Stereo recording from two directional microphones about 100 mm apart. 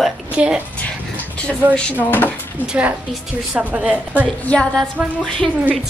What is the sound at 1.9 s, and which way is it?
Speech, 15° left (ahead or behind).